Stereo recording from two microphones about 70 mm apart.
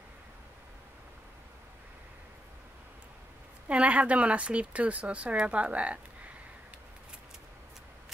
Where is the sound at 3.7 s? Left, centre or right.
Centre.